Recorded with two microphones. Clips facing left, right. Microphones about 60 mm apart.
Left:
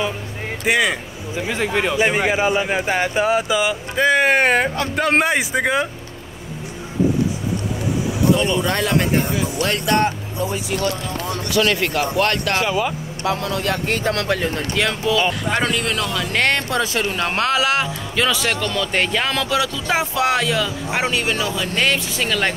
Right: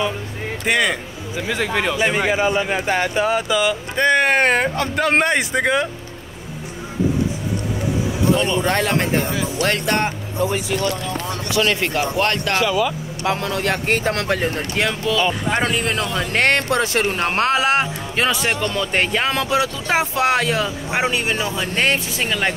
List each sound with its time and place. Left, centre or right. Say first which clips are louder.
0.7 s speech: left 1 dB; centre
1.5 s speech: even; left
3.9 s speech: left 1 dB; centre
8.3 s a man's voice: even; right
11.5 s a man's voice: left 1 dB; right
12.5 s speech: right 1 dB; left
13.2 s a man's voice: right 1 dB; right
15.0 s speech: left 1 dB; centre
15.6 s a man's voice: even; right
20.9 s speech: even; right